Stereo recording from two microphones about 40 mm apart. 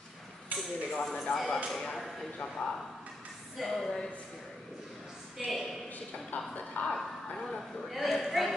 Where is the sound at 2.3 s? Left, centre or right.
Centre.